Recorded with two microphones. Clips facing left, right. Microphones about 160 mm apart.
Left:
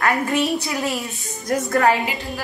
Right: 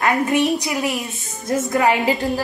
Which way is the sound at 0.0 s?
20° right (ahead or behind).